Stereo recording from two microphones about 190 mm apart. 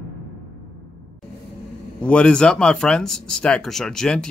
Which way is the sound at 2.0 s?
5° left (ahead or behind).